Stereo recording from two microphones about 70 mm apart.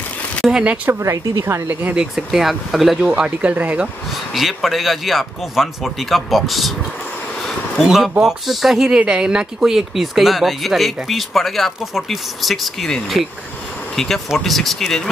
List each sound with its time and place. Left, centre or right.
0.4 s a sound: centre
1.0 s speech: right
1.4 s speech: right
2.0 s speech: centre
3.2 s speech: centre
4.3 s speech: centre
7.8 s speech: centre